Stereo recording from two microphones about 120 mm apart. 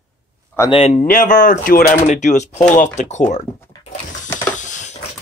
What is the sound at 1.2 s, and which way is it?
Speech, 90° left.